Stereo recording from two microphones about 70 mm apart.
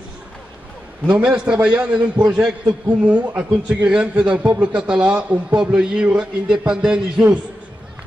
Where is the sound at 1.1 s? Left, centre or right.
Centre.